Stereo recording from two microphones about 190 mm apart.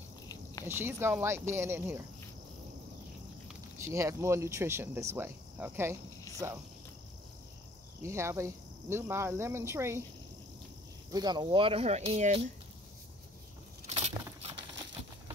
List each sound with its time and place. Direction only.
0.7 s speech: 10° right (ahead or behind)
3.8 s speech: 15° right (ahead or behind)
8.0 s speech: 15° right (ahead or behind)
11.1 s speech: 20° right (ahead or behind)
13.8 s a sound: 35° right (ahead or behind)